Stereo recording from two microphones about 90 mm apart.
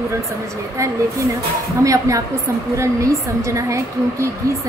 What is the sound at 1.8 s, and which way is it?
A woman's voice, 40° right (ahead or behind).